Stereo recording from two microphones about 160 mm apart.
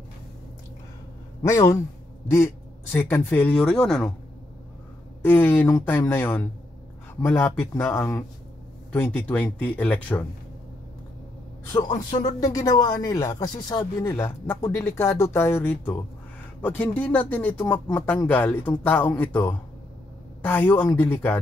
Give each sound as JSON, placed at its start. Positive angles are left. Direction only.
{"t": 1.4, "sound": "a man's voice", "side_deg": 20}
{"t": 5.2, "sound": "speech", "side_deg": 10}
{"t": 11.7, "sound": "a man's voice", "side_deg": 25}